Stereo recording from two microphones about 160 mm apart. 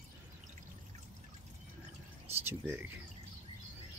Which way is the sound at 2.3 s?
15° right (ahead or behind).